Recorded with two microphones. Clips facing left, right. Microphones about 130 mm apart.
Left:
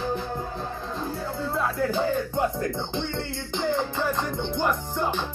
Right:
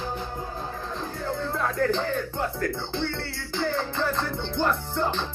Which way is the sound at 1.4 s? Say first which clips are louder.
Even; 5° left (ahead or behind).